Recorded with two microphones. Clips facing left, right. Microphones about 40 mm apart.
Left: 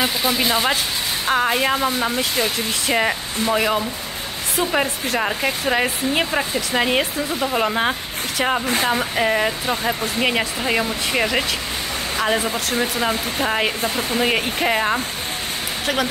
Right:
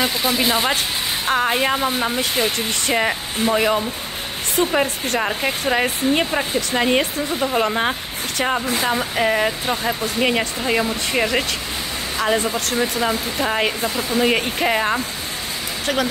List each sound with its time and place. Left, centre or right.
0.0 s speech: centre
13.8 s speech: left
14.2 s speech: centre